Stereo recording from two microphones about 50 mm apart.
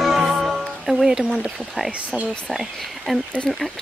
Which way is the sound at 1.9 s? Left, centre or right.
Right.